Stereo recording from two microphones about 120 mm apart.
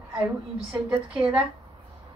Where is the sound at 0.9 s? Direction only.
10° right (ahead or behind).